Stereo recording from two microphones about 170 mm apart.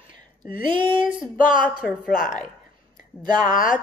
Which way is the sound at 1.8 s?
Centre (ahead or behind).